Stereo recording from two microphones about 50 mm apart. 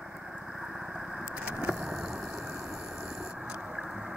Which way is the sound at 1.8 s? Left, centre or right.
Centre.